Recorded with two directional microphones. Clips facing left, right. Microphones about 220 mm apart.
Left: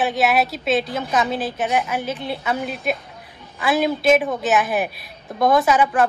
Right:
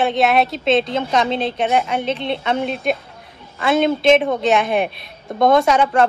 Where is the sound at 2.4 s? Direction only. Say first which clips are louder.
Right 4 dB; 5° left (ahead or behind).